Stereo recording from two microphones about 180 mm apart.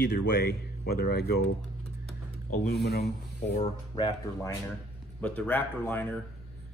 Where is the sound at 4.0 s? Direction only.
25° left (ahead or behind).